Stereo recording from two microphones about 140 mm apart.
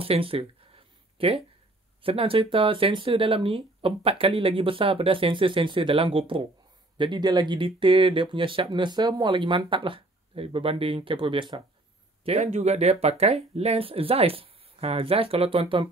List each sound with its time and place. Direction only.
0.0 s a sound: 40° right (ahead or behind)
2.0 s speech: 40° right (ahead or behind)
12.3 s speech: 50° right (ahead or behind)